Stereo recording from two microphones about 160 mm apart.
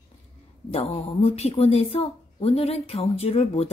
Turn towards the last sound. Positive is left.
turn(degrees=40)  # may be behind; listen again after turning